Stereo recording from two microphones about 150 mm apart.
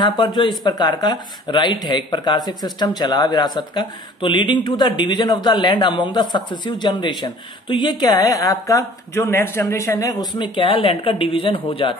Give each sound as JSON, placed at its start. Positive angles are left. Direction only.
{"t": 0.0, "sound": "speech", "side_deg": 30}
{"t": 10.4, "sound": "a woman's voice", "side_deg": 35}